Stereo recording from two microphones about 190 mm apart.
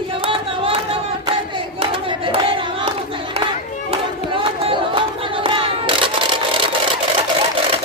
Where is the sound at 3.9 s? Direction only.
30° right (ahead or behind).